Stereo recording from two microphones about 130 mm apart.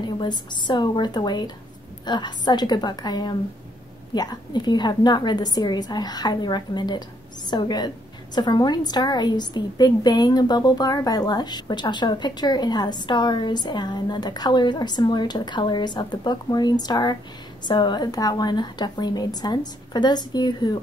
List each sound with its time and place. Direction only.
0.2 s a woman's voice: 35° left (ahead or behind)